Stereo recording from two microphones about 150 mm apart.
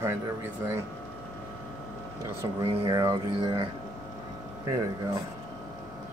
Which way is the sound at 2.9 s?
25° right (ahead or behind).